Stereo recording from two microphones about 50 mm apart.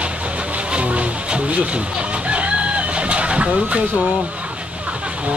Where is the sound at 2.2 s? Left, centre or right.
Right.